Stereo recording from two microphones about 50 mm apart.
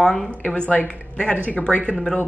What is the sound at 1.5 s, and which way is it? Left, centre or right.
Speech, left.